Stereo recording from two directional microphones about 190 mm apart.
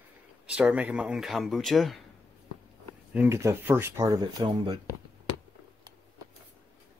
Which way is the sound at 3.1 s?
10° right (ahead or behind).